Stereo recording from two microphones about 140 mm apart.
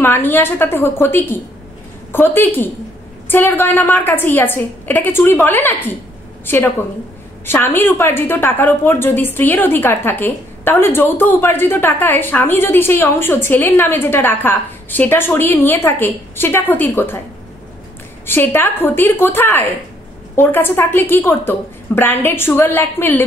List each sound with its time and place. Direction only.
0.0 s a woman's voice: 15° left (ahead or behind)
18.2 s a woman's voice: 15° left (ahead or behind)